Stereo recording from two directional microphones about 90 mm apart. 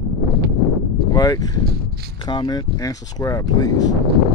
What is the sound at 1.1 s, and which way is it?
Speech, 45° left (ahead or behind).